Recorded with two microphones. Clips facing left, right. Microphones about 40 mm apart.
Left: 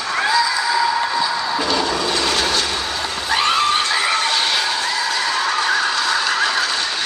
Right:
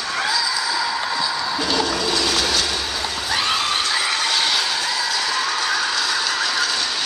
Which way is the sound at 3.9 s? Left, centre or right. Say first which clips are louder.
Left 3 dB; left.